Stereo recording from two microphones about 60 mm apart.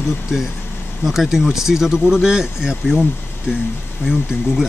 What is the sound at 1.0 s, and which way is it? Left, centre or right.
Speech, centre.